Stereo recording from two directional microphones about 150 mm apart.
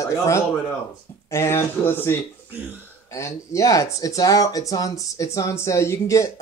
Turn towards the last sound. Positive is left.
turn(degrees=20)  # may be behind; listen again after turning